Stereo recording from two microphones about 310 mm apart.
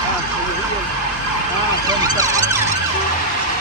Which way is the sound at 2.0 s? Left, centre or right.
Centre.